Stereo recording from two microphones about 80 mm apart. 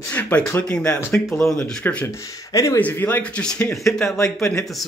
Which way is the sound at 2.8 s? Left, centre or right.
Left.